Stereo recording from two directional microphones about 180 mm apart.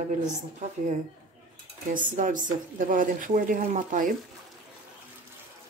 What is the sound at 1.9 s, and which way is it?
A woman's voice, 45° right (ahead or behind).